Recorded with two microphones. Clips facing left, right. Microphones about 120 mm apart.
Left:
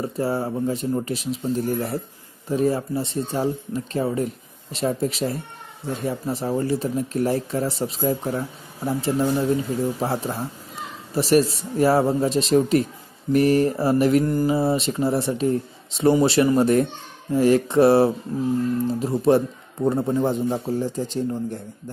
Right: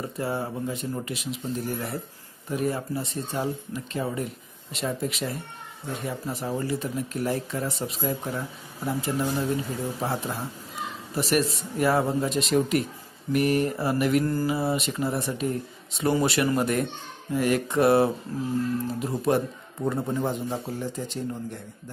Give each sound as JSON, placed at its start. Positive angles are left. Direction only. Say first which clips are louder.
{"t": 0.0, "sound": "speech", "louder": "left 5 dB", "side_deg": 30}
{"t": 14.2, "sound": "speech", "louder": "left 5 dB", "side_deg": 25}